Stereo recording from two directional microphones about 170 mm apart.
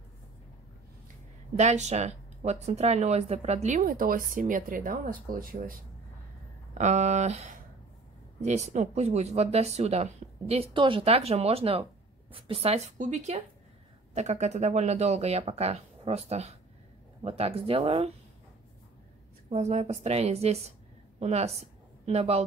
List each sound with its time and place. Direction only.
1.6 s speech: 40° right (ahead or behind)
6.7 s speech: 45° right (ahead or behind)
19.5 s a woman's voice: 40° right (ahead or behind)